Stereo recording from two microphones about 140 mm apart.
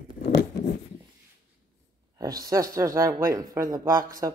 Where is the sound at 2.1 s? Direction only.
25° right (ahead or behind).